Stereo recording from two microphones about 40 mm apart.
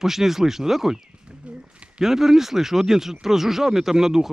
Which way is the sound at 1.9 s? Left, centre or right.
Centre.